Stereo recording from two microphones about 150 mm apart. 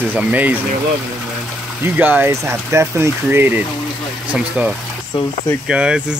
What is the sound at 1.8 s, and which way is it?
Speech, 10° right (ahead or behind).